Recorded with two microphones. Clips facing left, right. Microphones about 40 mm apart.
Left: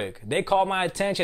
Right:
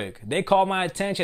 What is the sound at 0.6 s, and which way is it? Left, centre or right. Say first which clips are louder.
Speech: right 1 dB; centre.